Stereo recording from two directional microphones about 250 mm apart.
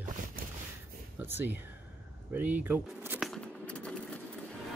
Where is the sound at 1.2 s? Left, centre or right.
Centre.